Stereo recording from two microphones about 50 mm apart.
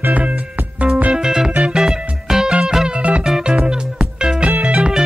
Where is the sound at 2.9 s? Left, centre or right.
Right.